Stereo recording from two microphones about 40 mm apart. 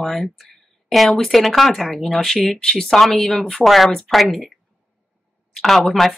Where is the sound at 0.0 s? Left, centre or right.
Centre.